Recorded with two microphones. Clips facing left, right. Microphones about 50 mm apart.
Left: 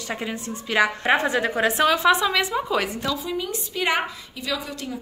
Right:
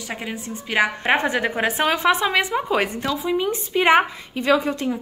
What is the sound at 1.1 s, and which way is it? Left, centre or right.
A woman's voice, right.